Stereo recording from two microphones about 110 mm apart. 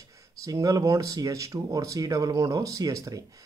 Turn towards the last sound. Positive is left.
turn(degrees=-30)  # may be behind; listen again after turning